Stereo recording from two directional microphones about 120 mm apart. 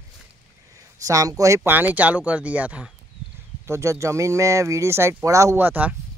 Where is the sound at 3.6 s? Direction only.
25° right (ahead or behind).